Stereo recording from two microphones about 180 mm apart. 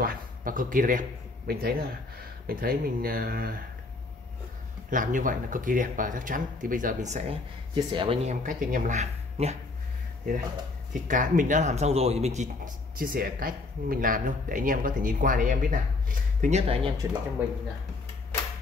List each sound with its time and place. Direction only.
0.0 s speech: 50° right (ahead or behind)
4.9 s speech: 45° right (ahead or behind)
10.9 s speech: 45° right (ahead or behind)
17.4 s speech: 10° right (ahead or behind)